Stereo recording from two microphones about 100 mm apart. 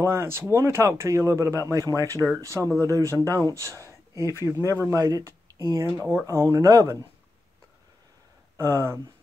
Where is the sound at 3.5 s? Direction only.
30° right (ahead or behind).